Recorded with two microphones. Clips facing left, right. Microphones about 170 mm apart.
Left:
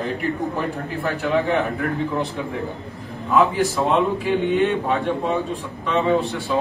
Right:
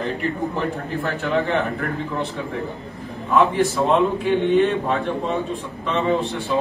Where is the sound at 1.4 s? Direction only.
15° left (ahead or behind).